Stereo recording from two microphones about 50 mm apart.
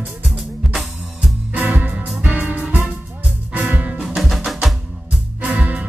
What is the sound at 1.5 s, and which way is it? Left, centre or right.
Music, right.